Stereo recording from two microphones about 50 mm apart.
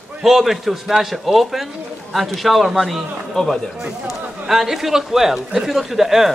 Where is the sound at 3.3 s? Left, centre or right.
Centre.